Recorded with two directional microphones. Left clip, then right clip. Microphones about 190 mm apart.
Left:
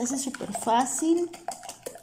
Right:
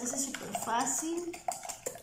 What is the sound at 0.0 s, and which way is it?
Speech, 50° left (ahead or behind).